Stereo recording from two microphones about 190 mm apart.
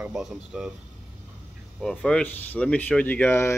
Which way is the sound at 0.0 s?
Centre (ahead or behind).